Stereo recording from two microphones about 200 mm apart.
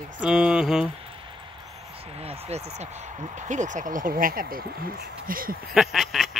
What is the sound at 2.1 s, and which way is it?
Speech, 30° right (ahead or behind).